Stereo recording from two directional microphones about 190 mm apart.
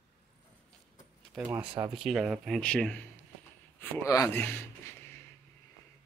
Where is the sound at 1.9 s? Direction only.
Centre (ahead or behind).